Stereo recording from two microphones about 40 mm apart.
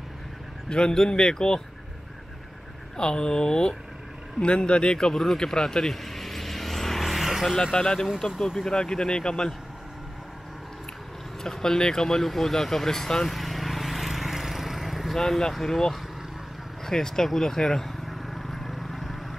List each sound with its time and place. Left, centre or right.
0.7 s speech: centre
3.0 s speech: left
4.4 s vehicle: left; by 7.5 s centre
7.8 s speech: centre
11.4 s speech: centre
13.3 s vehicle: centre
15.1 s speech: centre
16.8 s vehicle: centre